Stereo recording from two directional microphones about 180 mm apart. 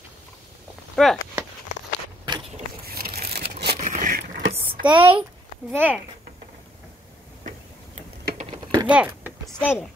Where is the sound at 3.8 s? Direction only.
45° right (ahead or behind).